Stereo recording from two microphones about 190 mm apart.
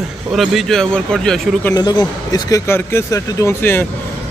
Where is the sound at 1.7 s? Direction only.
20° left (ahead or behind).